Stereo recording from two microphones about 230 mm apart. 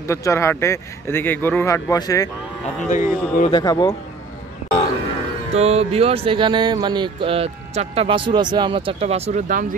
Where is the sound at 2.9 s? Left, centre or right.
Left.